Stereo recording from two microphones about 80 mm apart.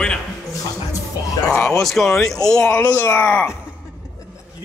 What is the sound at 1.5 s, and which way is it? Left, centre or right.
Speech, centre.